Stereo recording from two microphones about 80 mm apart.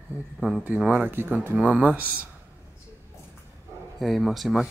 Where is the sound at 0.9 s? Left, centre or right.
Right.